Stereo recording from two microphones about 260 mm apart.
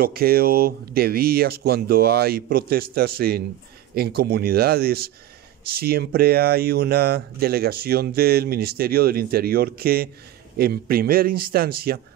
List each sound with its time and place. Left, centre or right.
0.0 s speech: right